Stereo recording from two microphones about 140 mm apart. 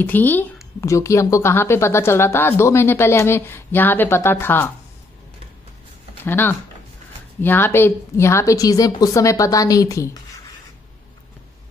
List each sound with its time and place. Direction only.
0.0 s a woman's voice: 15° left (ahead or behind)
6.2 s a woman's voice: 15° left (ahead or behind)